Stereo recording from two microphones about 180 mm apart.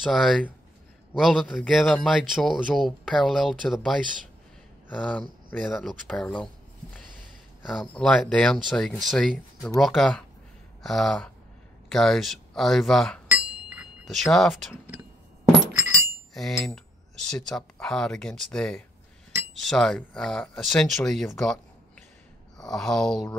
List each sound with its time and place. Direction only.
0.0 s speech: centre (ahead or behind)
1.6 s speech: 10° left (ahead or behind)
5.5 s speech: centre (ahead or behind)
7.6 s speech: centre (ahead or behind)
13.3 s chink: 10° right (ahead or behind)
15.8 s bicycle bell: 15° right (ahead or behind)
16.3 s speech: centre (ahead or behind)